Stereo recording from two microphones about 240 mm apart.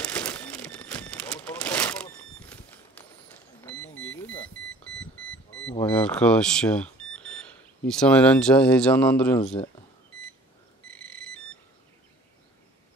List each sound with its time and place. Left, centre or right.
0.0 s a sound: centre
5.9 s speech: centre
9.4 s speech: left
10.9 s alarm clock: centre